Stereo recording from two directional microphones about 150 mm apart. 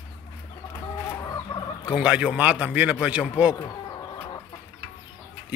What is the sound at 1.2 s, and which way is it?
Fowl, 25° left (ahead or behind).